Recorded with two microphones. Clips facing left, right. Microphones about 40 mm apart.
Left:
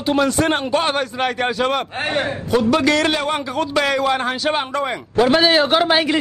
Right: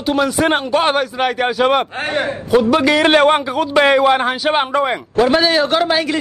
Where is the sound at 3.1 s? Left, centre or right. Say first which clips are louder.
Right 9 dB; right.